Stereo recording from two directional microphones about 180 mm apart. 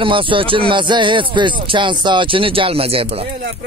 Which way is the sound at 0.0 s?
30° right (ahead or behind).